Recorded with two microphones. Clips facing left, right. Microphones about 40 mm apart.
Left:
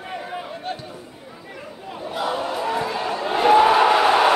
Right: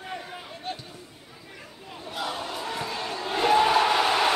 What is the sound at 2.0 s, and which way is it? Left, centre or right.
Crowd, centre.